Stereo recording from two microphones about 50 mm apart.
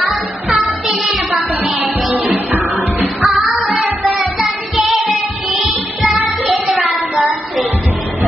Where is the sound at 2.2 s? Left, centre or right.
Right.